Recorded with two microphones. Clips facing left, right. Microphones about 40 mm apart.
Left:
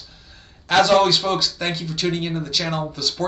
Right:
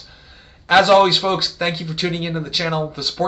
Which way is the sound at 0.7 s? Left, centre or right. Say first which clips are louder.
Right 3 dB; right.